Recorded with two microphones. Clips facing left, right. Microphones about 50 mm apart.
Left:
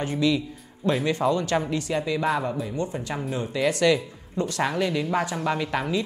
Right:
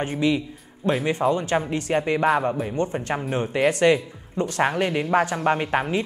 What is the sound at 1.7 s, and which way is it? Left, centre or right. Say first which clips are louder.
Speech: right 3 dB; right.